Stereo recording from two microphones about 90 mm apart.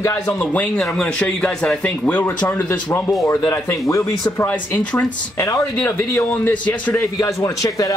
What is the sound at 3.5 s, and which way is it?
Speech, 35° left (ahead or behind).